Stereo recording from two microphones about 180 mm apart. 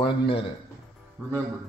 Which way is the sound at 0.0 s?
30° left (ahead or behind).